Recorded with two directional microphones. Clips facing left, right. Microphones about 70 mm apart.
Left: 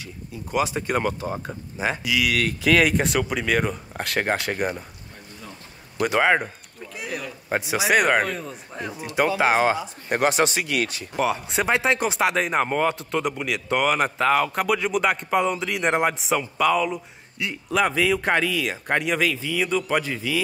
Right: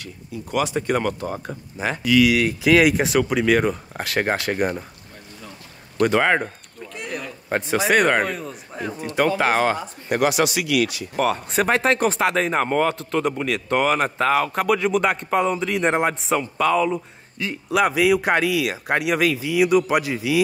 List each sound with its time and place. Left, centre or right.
0.0 s speech: centre
1.8 s speech: centre
2.3 s speech: centre
5.9 s speech: centre
9.4 s speech: centre
10.0 s speech: left
11.1 s speech: centre